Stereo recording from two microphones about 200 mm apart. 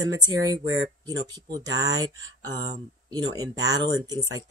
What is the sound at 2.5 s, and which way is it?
Speech, 20° right (ahead or behind).